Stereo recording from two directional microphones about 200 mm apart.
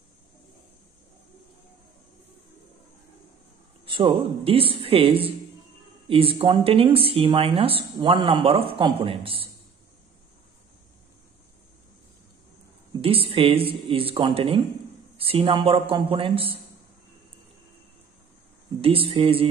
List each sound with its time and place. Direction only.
3.8 s speech: 25° right (ahead or behind)
13.0 s speech: 30° right (ahead or behind)
18.8 s speech: 30° right (ahead or behind)